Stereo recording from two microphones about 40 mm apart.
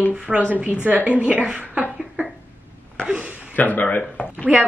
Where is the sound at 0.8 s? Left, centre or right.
Right.